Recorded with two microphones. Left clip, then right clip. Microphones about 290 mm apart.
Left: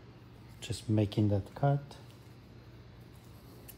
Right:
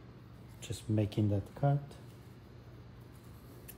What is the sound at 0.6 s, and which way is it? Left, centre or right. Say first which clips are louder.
Speech: left 3 dB; left.